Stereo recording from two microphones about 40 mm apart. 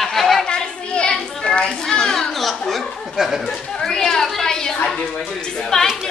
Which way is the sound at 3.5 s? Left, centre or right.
Centre.